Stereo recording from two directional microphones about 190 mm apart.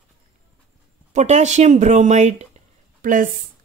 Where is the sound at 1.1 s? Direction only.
35° right (ahead or behind).